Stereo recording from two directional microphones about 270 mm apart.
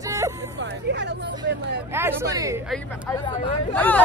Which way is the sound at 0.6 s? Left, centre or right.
Right.